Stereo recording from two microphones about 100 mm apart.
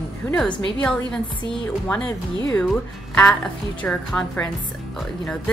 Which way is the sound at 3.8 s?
10° left (ahead or behind).